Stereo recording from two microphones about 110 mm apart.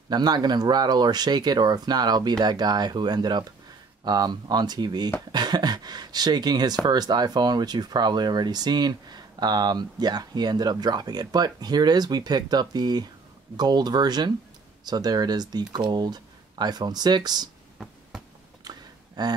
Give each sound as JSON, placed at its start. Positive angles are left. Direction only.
{"t": 0.1, "sound": "speech", "side_deg": -40}
{"t": 19.2, "sound": "speech", "side_deg": -40}